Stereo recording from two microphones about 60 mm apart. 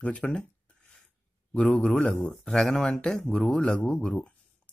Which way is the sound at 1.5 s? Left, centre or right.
Centre.